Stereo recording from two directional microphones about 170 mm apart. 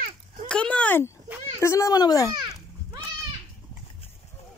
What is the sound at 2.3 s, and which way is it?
Children playing, 25° right (ahead or behind).